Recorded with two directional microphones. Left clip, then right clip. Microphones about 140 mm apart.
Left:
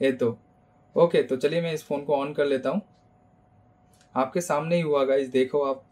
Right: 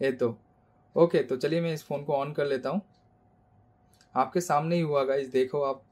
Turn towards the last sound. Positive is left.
turn(degrees=-40)  # may be behind; listen again after turning